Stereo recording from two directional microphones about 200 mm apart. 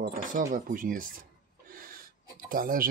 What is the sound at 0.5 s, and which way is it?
Speech, 45° right (ahead or behind).